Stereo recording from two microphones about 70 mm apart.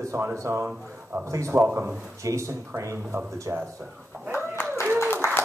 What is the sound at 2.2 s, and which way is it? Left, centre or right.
Speech, right.